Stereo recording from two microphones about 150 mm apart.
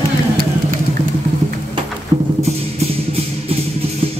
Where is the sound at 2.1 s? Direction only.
35° right (ahead or behind).